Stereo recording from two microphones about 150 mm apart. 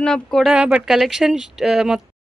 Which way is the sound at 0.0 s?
5° left (ahead or behind).